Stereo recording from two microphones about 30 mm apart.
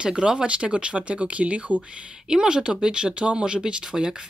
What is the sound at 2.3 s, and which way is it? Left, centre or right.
Speech, right.